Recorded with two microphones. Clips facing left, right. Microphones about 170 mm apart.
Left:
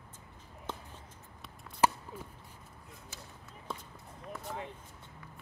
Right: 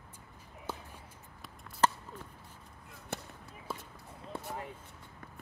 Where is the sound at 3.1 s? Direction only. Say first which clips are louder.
Right 13 dB; 65° right (ahead or behind).